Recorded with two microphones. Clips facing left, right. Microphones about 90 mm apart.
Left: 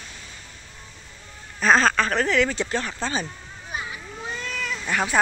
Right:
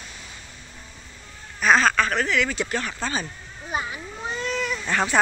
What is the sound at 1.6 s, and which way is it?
Speech, 35° left (ahead or behind).